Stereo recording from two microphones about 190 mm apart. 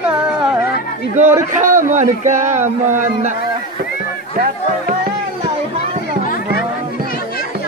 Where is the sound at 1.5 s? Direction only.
45° right (ahead or behind).